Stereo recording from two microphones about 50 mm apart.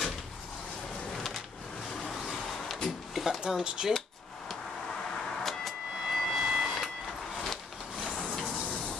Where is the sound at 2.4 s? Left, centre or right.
Centre.